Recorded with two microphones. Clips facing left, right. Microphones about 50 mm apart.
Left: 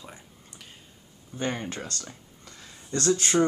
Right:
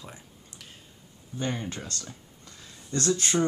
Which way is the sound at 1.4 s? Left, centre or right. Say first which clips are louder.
Left 2 dB; left.